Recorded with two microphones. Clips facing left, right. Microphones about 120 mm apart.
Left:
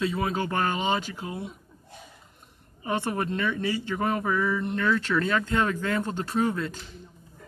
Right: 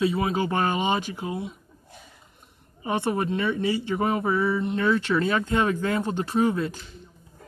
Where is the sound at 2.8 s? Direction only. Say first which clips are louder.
Right 3 dB; 15° right (ahead or behind).